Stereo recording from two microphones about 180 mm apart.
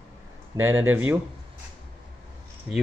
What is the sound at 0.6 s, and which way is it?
Speech, 15° right (ahead or behind).